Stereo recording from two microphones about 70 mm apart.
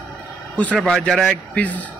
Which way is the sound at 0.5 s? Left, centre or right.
Left.